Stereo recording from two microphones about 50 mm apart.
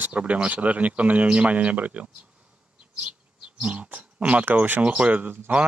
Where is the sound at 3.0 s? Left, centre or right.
Right.